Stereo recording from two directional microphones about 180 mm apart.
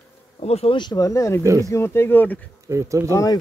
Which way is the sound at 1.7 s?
15° left (ahead or behind).